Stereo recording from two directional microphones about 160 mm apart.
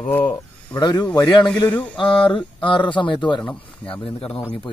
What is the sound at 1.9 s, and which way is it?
Speech, 30° left (ahead or behind).